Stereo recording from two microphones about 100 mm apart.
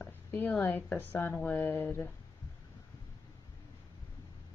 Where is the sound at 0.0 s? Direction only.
20° left (ahead or behind).